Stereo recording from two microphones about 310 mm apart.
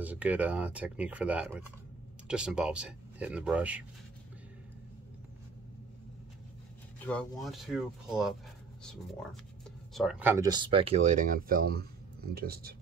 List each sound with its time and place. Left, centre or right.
0.0 s speech: centre
7.1 s speech: centre
9.9 s speech: centre; by 12.7 s right